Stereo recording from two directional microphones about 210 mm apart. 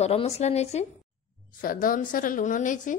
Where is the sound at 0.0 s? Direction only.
30° left (ahead or behind).